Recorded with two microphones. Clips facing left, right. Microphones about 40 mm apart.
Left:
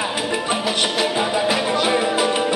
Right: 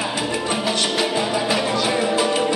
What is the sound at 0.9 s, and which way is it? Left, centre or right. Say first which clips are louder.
Music: left 1 dB; centre.